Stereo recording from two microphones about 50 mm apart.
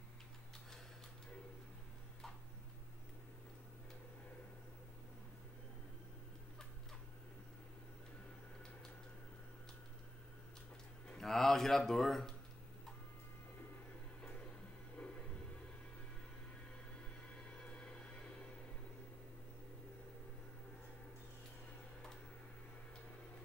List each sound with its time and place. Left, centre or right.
11.1 s speech: centre
15.0 s a sound: left
17.3 s music: left